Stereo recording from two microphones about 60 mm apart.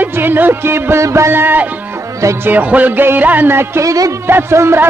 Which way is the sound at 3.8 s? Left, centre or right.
Right.